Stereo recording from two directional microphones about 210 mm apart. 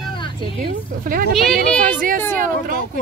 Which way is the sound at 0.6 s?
40° right (ahead or behind).